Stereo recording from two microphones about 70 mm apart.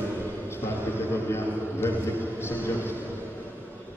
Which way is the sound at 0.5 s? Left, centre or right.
Left.